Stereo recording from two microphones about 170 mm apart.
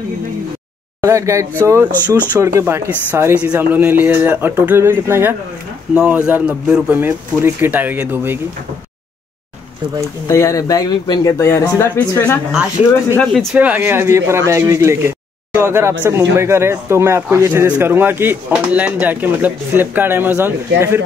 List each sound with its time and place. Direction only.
1.0 s a man's voice: 15° right (ahead or behind)
10.2 s speech: 20° left (ahead or behind); by 13.6 s centre (ahead or behind)
13.6 s a man's voice: 10° right (ahead or behind)